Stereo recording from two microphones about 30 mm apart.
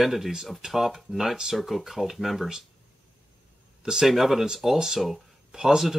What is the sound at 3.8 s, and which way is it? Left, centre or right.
Speech, centre.